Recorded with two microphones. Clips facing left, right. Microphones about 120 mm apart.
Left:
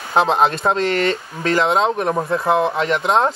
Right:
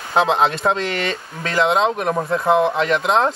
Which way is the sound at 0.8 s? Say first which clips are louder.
Left 5 dB; 40° left (ahead or behind).